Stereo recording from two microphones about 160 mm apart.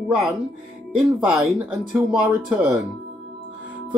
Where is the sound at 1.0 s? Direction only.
Centre (ahead or behind).